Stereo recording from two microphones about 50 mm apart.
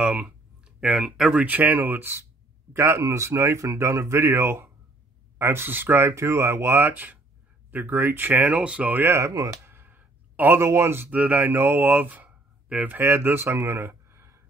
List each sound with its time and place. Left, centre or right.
0.0 s a sound: right
1.4 s speech: right
2.7 s speech: right
5.4 s speech: right
6.9 s speech: right
9.0 s speech: right
9.9 s a sound: right
10.5 s speech: right
11.1 s speech: right
11.5 s speech: right
13.0 s speech: right
13.8 s a sound: right